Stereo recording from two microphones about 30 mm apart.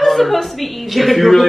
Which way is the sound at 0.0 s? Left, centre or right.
Centre.